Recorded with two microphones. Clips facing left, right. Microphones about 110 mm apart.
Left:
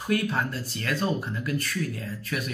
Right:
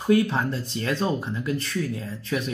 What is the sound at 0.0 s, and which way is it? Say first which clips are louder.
Speech: right 5 dB; 25° right (ahead or behind).